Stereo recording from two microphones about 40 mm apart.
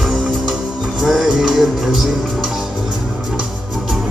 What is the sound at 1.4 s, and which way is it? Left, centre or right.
Music, centre.